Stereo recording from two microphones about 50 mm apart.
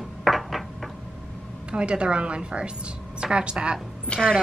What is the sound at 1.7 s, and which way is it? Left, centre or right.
Speech, right.